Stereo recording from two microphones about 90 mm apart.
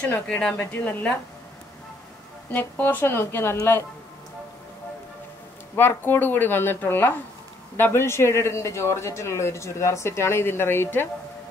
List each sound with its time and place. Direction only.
0.0 s speech: 20° left (ahead or behind)
2.5 s speech: 20° left (ahead or behind)
5.8 s a man's voice: 25° left (ahead or behind)